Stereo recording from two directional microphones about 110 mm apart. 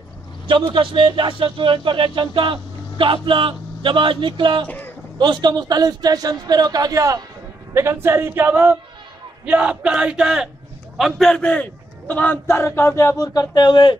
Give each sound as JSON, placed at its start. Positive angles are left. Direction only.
{"t": 0.5, "sound": "a man's voice", "side_deg": -45}
{"t": 4.6, "sound": "speech", "side_deg": 15}
{"t": 5.2, "sound": "a man's voice", "side_deg": -40}